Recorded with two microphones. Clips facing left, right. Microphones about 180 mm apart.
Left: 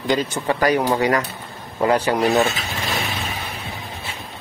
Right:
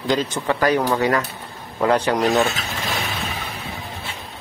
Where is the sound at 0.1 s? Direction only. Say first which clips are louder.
Even; centre (ahead or behind).